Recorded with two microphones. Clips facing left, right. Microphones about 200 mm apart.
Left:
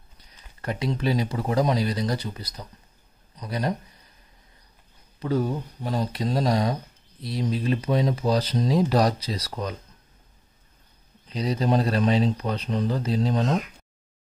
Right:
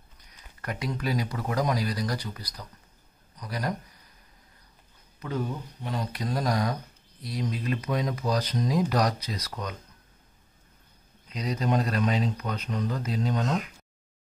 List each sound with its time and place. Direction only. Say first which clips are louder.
0.2 s speech: left 4 dB; 30° left (ahead or behind)
5.2 s speech: left 6 dB; 35° left (ahead or behind)
11.2 s speech: left 4 dB; 30° left (ahead or behind)